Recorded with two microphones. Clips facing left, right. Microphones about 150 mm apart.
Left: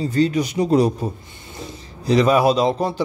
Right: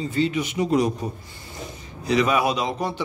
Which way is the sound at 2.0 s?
35° left (ahead or behind).